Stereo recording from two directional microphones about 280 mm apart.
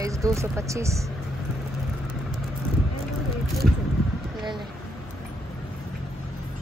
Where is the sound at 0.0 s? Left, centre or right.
Centre.